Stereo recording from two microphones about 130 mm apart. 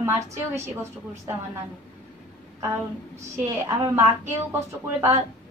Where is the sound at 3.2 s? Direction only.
20° right (ahead or behind).